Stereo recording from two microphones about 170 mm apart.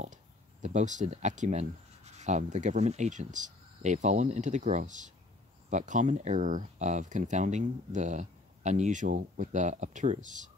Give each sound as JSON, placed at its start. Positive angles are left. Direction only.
{"t": 0.0, "sound": "speech", "side_deg": -45}